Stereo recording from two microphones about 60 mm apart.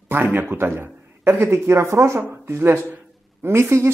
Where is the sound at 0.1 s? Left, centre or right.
Right.